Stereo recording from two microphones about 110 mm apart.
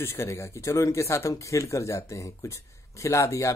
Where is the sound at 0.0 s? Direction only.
25° left (ahead or behind).